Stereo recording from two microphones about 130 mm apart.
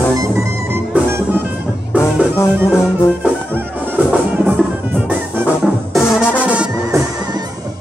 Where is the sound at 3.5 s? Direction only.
15° right (ahead or behind).